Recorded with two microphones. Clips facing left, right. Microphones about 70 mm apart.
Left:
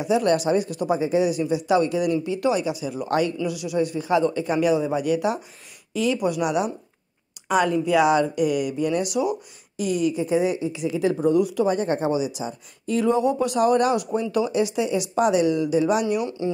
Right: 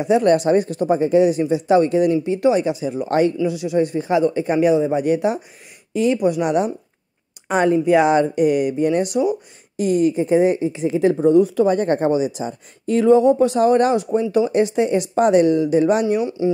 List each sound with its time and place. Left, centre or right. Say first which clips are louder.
0.0 s speech: right 5 dB; right